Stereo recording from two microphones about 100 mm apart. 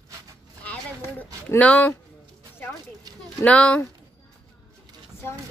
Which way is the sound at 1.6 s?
15° left (ahead or behind).